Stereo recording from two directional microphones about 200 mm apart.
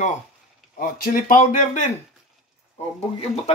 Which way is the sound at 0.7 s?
45° left (ahead or behind).